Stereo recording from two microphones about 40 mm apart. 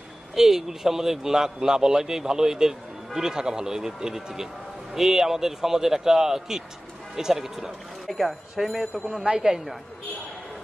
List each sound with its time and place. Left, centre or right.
0.4 s a man's voice: centre
9.1 s a man's voice: centre